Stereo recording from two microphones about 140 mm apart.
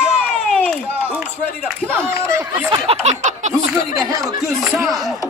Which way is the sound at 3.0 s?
55° right (ahead or behind).